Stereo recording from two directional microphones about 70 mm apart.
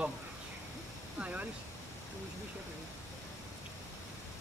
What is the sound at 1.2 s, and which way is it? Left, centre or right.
Speech, right.